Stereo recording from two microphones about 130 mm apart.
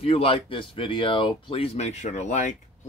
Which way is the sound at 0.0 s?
45° left (ahead or behind).